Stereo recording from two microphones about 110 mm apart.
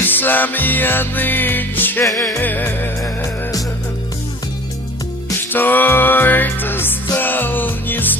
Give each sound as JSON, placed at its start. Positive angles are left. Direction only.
{"t": 0.0, "sound": "music", "side_deg": 15}
{"t": 2.0, "sound": "music", "side_deg": 0}
{"t": 2.3, "sound": "music", "side_deg": 20}
{"t": 5.5, "sound": "music", "side_deg": 15}